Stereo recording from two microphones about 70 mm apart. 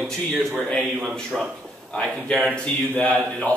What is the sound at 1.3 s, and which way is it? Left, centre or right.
Speech, centre.